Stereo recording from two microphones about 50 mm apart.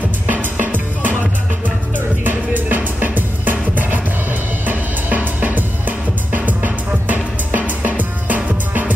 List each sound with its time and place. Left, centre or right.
0.3 s music: right